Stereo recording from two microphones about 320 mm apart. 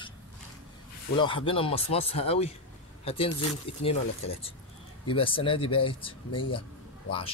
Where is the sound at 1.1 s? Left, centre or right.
Centre.